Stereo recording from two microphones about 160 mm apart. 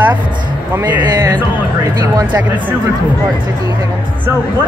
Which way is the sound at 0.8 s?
25° right (ahead or behind).